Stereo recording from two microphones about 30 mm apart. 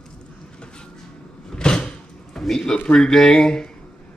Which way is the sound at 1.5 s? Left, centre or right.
Left.